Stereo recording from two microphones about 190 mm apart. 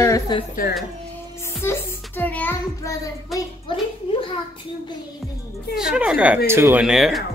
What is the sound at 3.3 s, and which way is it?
Speech, 25° left (ahead or behind).